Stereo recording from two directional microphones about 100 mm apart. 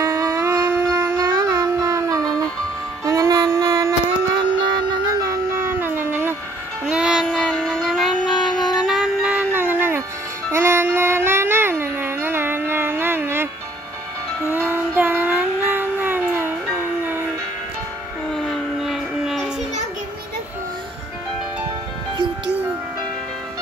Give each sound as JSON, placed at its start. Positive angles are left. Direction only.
{"t": 0.0, "sound": "shofar", "side_deg": -30}
{"t": 3.1, "sound": "child singing", "side_deg": -35}
{"t": 4.4, "sound": "a sound", "side_deg": -50}
{"t": 5.5, "sound": "dog", "side_deg": -25}
{"t": 6.9, "sound": "music", "side_deg": -5}
{"t": 7.2, "sound": "music", "side_deg": 5}
{"t": 14.4, "sound": "child singing", "side_deg": -20}
{"t": 18.3, "sound": "a sound", "side_deg": 0}